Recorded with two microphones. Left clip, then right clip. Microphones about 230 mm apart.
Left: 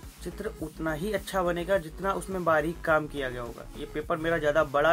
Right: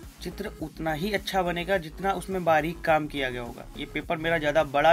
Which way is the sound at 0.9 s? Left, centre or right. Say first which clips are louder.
Right 3 dB; right.